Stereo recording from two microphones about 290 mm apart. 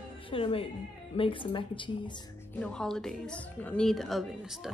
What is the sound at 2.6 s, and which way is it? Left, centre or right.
Speech, centre.